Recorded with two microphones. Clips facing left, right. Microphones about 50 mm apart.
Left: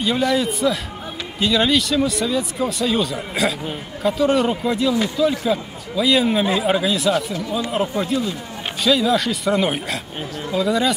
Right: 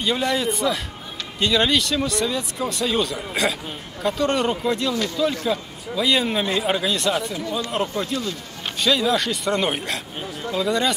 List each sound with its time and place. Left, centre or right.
0.0 s a man's voice: centre
4.9 s speech: centre
5.2 s a man's voice: centre